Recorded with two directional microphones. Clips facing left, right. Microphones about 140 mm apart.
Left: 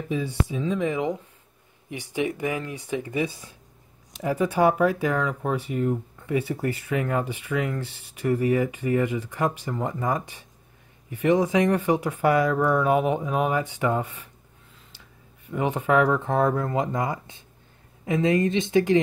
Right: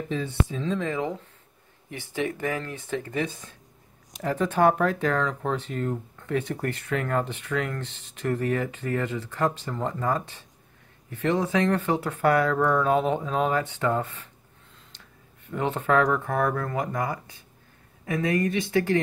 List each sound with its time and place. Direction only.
0.1 s speech: 10° left (ahead or behind)
15.5 s speech: 10° left (ahead or behind)